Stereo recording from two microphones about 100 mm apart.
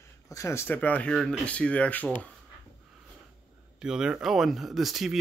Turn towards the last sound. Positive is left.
turn(degrees=0)  # may be behind; listen again after turning